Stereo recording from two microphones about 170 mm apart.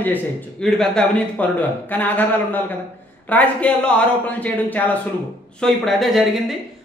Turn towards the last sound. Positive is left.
turn(degrees=0)  # may be behind; listen again after turning